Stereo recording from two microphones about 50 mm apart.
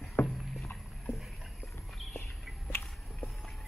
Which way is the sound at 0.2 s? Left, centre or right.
Left.